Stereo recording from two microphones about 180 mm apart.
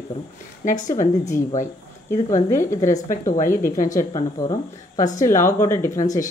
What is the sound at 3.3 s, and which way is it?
Speech, 45° left (ahead or behind).